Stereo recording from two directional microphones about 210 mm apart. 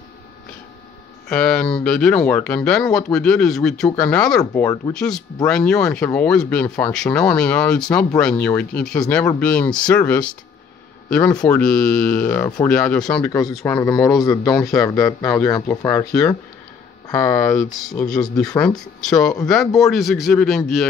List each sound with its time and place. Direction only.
1.3 s speech: 5° left (ahead or behind)
14.5 s speech: centre (ahead or behind)
14.9 s speech: 15° left (ahead or behind)
17.1 s speech: 5° left (ahead or behind)